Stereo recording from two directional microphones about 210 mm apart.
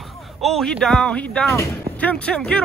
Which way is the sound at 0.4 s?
Centre (ahead or behind).